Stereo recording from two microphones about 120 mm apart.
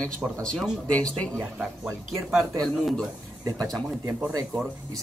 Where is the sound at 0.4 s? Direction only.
5° left (ahead or behind).